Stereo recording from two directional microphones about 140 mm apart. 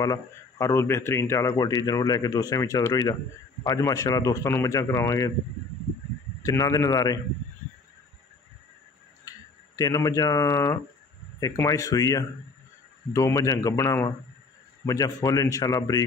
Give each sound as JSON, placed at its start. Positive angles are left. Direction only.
{"t": 0.0, "sound": "a man's voice", "side_deg": 25}
{"t": 6.4, "sound": "a man's voice", "side_deg": 25}
{"t": 9.8, "sound": "a man's voice", "side_deg": 25}